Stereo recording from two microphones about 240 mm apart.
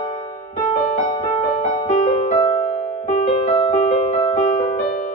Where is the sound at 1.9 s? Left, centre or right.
Left.